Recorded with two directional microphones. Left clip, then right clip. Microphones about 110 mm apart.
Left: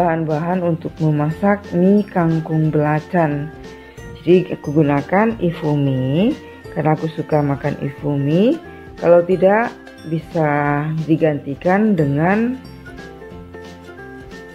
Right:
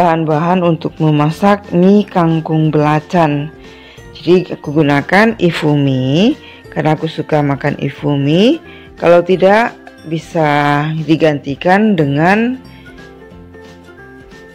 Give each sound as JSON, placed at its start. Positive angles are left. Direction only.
{"t": 0.0, "sound": "speech", "side_deg": -30}
{"t": 4.7, "sound": "speech", "side_deg": -45}